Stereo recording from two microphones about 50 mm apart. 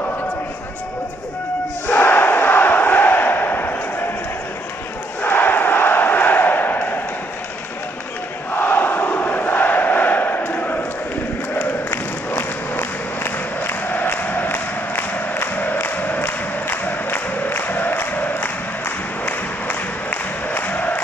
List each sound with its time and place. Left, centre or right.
1.9 s battle cry: left
5.2 s a sound: left
8.5 s crowd: left
11.9 s crowd: left